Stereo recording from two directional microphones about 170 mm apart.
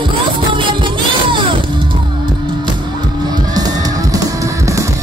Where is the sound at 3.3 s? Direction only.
20° right (ahead or behind).